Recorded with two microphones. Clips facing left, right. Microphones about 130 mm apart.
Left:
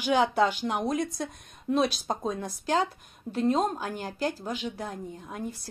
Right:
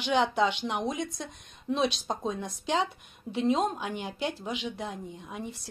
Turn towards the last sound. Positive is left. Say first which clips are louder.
# left 2 dB
turn(degrees=0)  # may be behind; listen again after turning